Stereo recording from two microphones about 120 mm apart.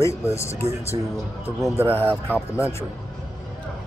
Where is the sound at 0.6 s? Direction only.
60° right (ahead or behind).